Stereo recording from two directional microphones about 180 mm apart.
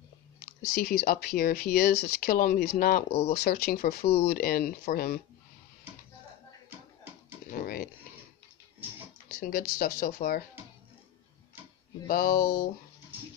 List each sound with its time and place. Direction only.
0.6 s speech: 55° left (ahead or behind)
3.1 s speech: 35° left (ahead or behind)
3.3 s speech: 60° left (ahead or behind)
4.0 s speech: 35° left (ahead or behind)
4.3 s speech: 55° left (ahead or behind)
7.5 s a sound: 55° left (ahead or behind)
9.3 s speech: 50° left (ahead or behind)
12.1 s speech: 50° left (ahead or behind)